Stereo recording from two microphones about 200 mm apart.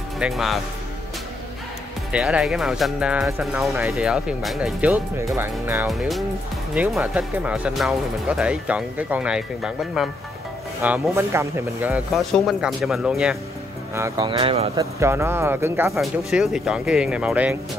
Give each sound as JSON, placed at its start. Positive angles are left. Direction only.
{"t": 0.2, "sound": "speech", "side_deg": 0}
{"t": 2.1, "sound": "speech", "side_deg": 0}
{"t": 5.9, "sound": "speech", "side_deg": 0}
{"t": 13.9, "sound": "speech", "side_deg": -15}
{"t": 14.8, "sound": "speech", "side_deg": -15}